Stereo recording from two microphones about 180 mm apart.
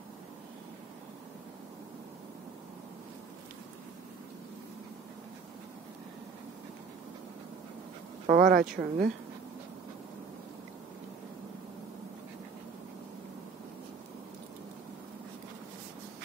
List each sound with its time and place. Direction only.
8.3 s speech: 50° right (ahead or behind)